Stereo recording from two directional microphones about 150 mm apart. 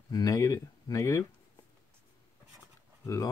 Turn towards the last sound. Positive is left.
turn(degrees=20)  # may be behind; listen again after turning